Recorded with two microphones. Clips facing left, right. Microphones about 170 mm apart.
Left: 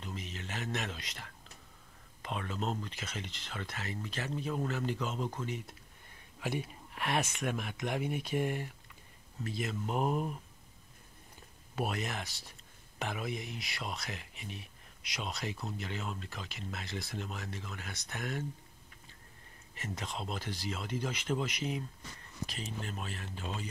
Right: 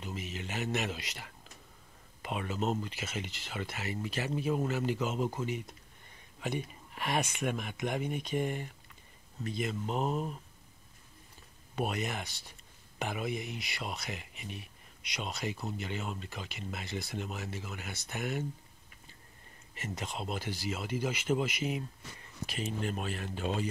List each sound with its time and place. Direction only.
0.0 s a sound: 5° right (ahead or behind)
2.2 s speech: 5° right (ahead or behind)
6.4 s speech: 5° left (ahead or behind)
11.7 s speech: centre (ahead or behind)
19.7 s speech: centre (ahead or behind)
23.0 s a man's voice: 60° right (ahead or behind)